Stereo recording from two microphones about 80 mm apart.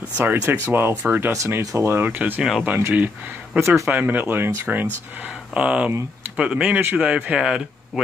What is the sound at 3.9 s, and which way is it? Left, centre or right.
Speech, right.